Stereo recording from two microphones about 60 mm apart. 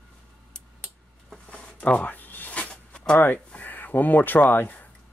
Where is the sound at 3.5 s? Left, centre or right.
Left.